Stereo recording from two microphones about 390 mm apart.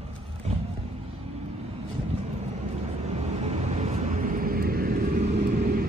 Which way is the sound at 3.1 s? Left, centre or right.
Centre.